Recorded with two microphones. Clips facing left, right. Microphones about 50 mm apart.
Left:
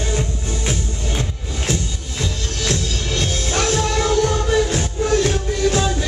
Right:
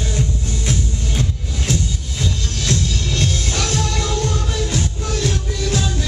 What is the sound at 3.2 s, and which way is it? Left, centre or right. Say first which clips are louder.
Music: left 3 dB; left.